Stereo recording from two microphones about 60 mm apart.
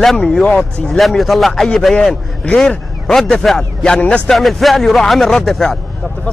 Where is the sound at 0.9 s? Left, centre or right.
Centre.